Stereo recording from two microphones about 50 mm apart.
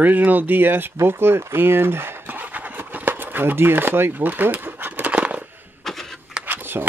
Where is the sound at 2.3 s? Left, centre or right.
Right.